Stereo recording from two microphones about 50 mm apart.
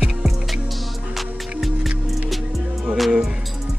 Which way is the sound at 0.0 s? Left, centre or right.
Centre.